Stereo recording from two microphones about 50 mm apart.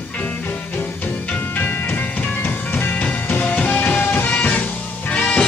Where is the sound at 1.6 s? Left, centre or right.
Left.